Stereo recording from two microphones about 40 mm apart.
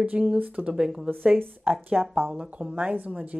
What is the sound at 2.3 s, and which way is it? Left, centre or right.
Speech, right.